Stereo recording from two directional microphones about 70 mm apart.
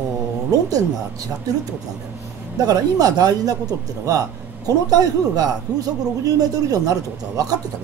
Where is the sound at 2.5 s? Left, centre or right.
Right.